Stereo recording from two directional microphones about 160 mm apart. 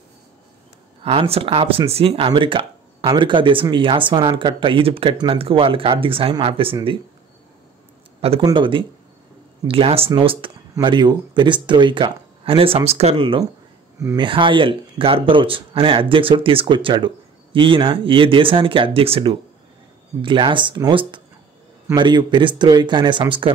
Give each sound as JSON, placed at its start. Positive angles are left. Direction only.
{"t": 1.3, "sound": "speech", "side_deg": -35}
{"t": 8.2, "sound": "speech", "side_deg": -35}
{"t": 13.9, "sound": "speech", "side_deg": -20}
{"t": 14.2, "sound": "speech", "side_deg": -30}